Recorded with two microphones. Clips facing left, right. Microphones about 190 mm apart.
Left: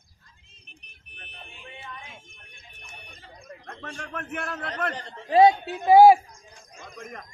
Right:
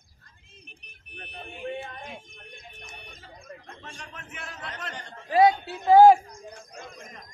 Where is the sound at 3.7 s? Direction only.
55° left (ahead or behind).